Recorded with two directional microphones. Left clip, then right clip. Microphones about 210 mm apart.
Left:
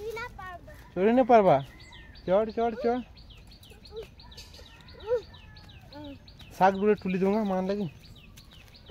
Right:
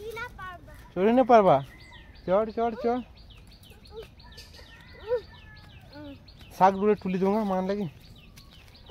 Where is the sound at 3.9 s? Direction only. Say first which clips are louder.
Left 2 dB; 15° left (ahead or behind).